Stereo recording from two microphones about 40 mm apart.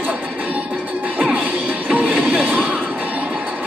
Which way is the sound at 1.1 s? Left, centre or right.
Right.